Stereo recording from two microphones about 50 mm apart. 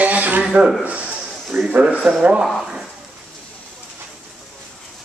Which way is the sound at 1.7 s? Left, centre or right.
Right.